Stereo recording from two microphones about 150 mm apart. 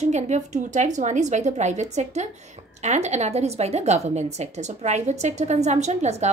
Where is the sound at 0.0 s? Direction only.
50° right (ahead or behind).